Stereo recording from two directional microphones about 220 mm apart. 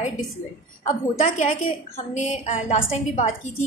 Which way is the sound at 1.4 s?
35° left (ahead or behind).